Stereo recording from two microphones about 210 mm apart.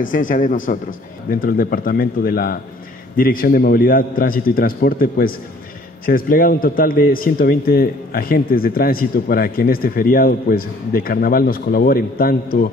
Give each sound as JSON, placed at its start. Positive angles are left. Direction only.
{"t": 0.0, "sound": "a man's voice", "side_deg": 40}